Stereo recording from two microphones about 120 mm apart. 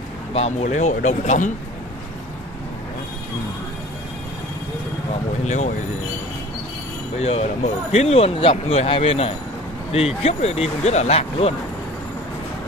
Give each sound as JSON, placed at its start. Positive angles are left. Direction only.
{"t": 0.3, "sound": "speech", "side_deg": 60}
{"t": 5.4, "sound": "speech", "side_deg": 80}
{"t": 7.2, "sound": "speech", "side_deg": 60}